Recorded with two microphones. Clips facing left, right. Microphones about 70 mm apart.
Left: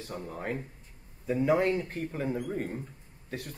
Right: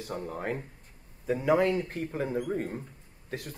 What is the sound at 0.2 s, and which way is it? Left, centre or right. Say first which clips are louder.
Speech: even; right.